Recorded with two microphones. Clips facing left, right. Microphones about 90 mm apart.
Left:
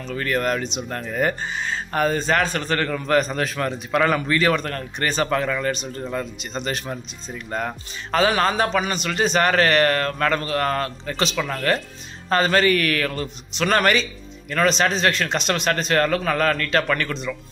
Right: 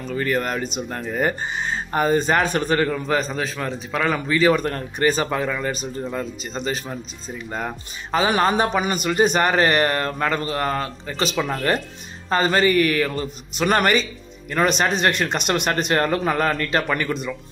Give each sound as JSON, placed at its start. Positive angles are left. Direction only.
{"t": 0.0, "sound": "a man's voice", "side_deg": -5}
{"t": 3.0, "sound": "a man's voice", "side_deg": 0}
{"t": 11.3, "sound": "speech", "side_deg": -20}
{"t": 16.8, "sound": "speech", "side_deg": -10}